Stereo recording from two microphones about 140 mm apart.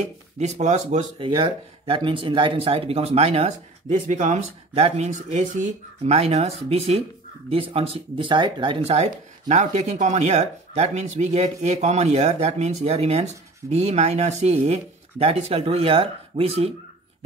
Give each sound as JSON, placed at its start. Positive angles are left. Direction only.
{"t": 0.4, "sound": "speech", "side_deg": -55}
{"t": 1.2, "sound": "speech", "side_deg": -35}